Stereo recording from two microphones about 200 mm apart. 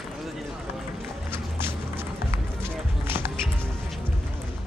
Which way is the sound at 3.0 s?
10° right (ahead or behind).